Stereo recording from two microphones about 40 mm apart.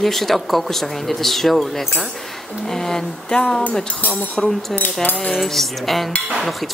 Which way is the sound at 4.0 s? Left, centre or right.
Left.